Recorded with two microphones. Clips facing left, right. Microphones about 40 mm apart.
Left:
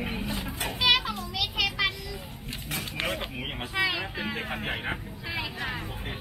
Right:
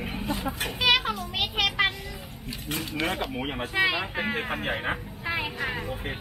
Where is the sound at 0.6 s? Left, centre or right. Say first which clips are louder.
Even; right.